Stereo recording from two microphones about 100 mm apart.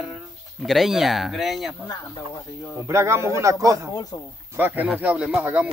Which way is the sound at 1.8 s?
35° left (ahead or behind).